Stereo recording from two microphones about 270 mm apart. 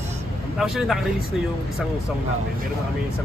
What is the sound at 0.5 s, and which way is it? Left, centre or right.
Speech, centre.